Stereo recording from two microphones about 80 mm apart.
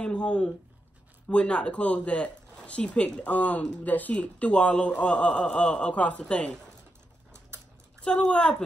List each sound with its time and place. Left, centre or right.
0.0 s speech: centre
8.0 s speech: centre